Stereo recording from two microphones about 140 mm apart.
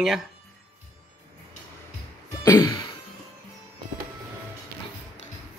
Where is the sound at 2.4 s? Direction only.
25° left (ahead or behind).